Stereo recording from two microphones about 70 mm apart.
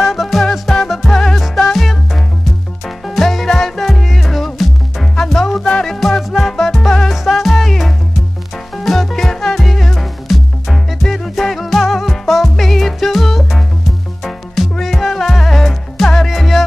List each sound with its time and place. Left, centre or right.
0.0 s music: centre